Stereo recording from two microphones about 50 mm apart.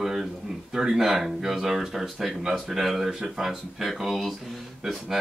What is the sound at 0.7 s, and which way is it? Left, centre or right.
Speech, centre.